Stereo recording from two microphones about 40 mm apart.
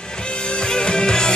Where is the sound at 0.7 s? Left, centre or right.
Left.